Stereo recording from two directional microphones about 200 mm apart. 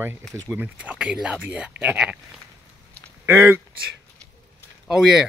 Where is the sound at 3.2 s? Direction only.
10° right (ahead or behind).